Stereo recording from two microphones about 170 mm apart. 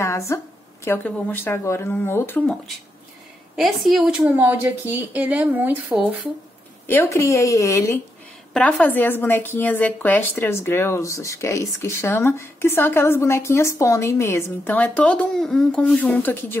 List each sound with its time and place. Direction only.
0.0 s a woman's voice: 15° left (ahead or behind)
3.5 s a woman's voice: centre (ahead or behind)
4.4 s speech: 10° right (ahead or behind)
6.9 s a woman's voice: 15° left (ahead or behind)